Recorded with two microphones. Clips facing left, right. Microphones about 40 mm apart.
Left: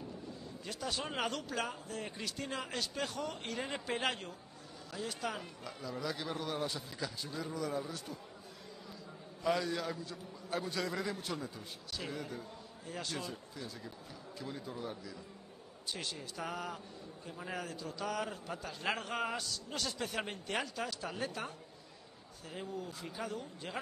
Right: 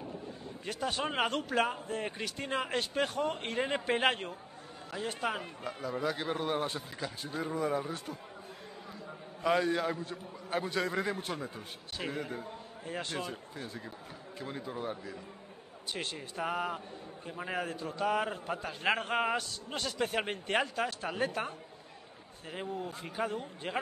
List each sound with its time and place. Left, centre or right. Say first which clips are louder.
0.7 s a man's voice: right 6 dB; right
9.4 s a man's voice: right 5 dB; right